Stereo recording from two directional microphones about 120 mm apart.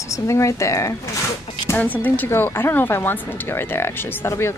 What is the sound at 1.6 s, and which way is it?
Speech, 15° left (ahead or behind).